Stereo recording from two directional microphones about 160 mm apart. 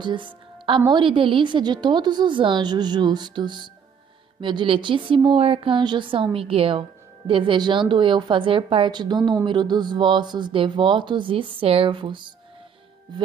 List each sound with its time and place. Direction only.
0.0 s a woman's voice: 30° right (ahead or behind)